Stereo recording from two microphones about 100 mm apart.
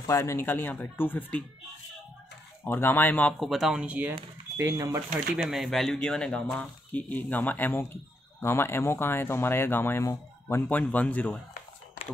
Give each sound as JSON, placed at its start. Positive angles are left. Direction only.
{"t": 0.0, "sound": "speech", "side_deg": 30}
{"t": 2.6, "sound": "speech", "side_deg": 20}
{"t": 3.3, "sound": "speech", "side_deg": 0}
{"t": 3.8, "sound": "speech", "side_deg": -15}
{"t": 4.1, "sound": "speech", "side_deg": -35}
{"t": 5.3, "sound": "speech", "side_deg": -5}
{"t": 10.8, "sound": "speech", "side_deg": 15}